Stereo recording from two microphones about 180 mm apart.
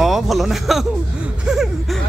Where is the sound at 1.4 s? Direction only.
Centre (ahead or behind).